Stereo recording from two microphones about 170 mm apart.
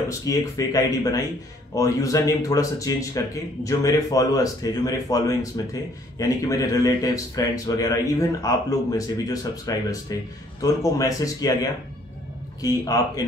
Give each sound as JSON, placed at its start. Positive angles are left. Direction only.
{"t": 0.2, "sound": "speech", "side_deg": 20}
{"t": 12.6, "sound": "speech", "side_deg": 20}